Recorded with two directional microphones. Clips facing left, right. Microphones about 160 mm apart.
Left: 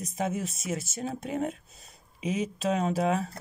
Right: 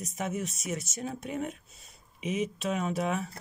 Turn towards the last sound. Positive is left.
turn(degrees=30)  # may be behind; listen again after turning